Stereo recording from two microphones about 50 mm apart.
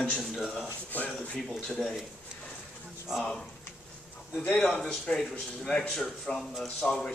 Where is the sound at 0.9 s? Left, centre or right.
Left.